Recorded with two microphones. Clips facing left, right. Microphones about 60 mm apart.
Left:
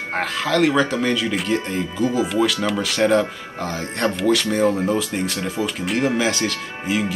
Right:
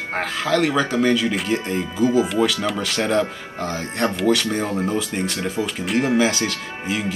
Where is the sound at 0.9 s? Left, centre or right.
Centre.